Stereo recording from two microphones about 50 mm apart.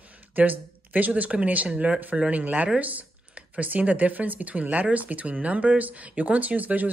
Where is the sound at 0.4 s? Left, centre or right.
Right.